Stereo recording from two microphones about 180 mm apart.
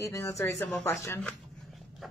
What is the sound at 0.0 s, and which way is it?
A woman's voice, 15° left (ahead or behind).